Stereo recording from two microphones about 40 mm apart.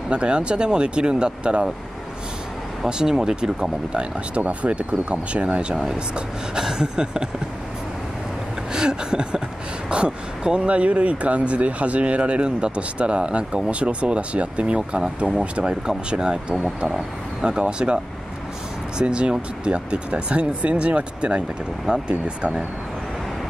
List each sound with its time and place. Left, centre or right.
0.1 s speech: right
2.9 s speech: centre
4.5 s speech: right
6.6 s speech: centre
8.7 s a sound: right
9.8 s speech: right
18.9 s speech: right